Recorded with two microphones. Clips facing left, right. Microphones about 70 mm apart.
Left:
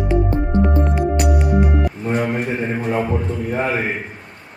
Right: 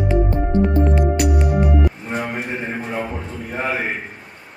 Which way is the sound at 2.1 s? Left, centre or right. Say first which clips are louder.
Left 5 dB; centre.